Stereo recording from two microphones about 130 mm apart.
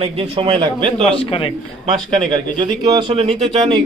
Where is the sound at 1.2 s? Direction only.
45° left (ahead or behind).